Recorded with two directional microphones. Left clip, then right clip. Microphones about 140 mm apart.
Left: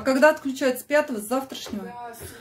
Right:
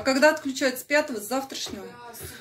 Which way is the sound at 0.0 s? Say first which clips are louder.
Left 2 dB; 15° left (ahead or behind).